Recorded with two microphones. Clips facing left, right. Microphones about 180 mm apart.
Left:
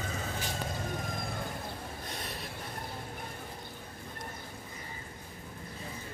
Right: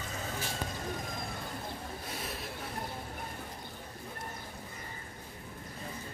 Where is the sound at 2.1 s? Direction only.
5° right (ahead or behind).